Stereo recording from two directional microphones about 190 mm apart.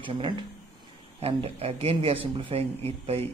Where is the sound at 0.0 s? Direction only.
25° right (ahead or behind).